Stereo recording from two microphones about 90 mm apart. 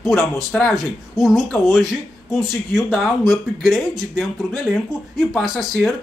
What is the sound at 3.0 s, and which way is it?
A man's voice, centre (ahead or behind).